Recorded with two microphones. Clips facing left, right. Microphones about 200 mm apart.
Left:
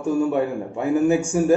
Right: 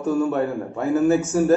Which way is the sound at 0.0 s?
15° left (ahead or behind).